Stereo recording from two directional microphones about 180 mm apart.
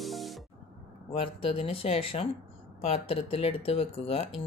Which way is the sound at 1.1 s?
30° left (ahead or behind).